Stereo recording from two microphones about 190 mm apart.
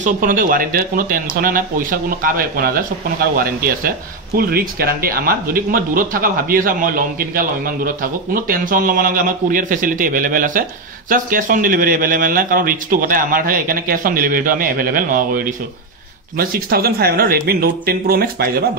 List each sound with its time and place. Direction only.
0.0 s speech: 45° right (ahead or behind)